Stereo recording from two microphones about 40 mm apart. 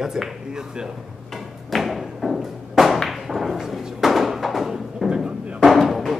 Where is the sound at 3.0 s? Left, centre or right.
Centre.